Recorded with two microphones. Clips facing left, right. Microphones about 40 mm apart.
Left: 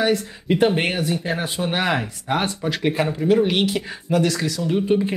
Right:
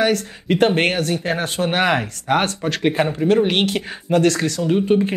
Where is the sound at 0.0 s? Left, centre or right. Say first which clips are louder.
Right 2 dB; right.